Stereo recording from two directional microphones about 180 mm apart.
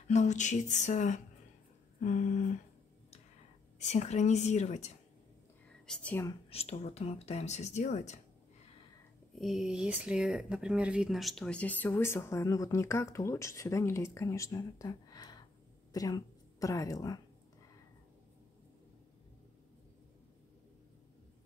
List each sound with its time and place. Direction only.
0.1 s speech: 40° left (ahead or behind)
2.0 s a sound: 45° left (ahead or behind)
3.8 s speech: 40° left (ahead or behind)
5.9 s speech: 10° left (ahead or behind)
6.5 s speech: 35° left (ahead or behind)
9.3 s a woman's voice: centre (ahead or behind); by 17.2 s 20° left (ahead or behind)